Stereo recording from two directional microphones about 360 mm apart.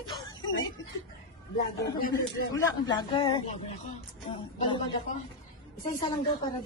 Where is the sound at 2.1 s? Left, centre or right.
Centre.